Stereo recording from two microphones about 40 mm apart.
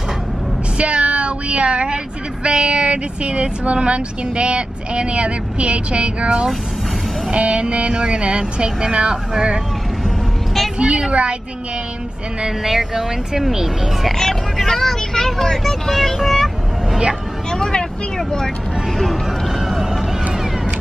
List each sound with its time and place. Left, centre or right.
0.7 s a sound: right
2.4 s speech: right
10.0 s vehicle: centre
10.8 s speech: right
12.4 s speech: centre
14.6 s speech: centre
17.5 s vehicle: centre
18.9 s a sound: centre